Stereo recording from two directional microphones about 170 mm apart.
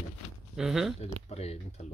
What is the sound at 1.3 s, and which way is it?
Speech, 40° left (ahead or behind).